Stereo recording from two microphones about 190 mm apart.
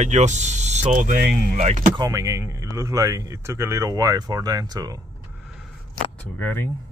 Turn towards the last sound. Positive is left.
turn(degrees=10)  # may be behind; listen again after turning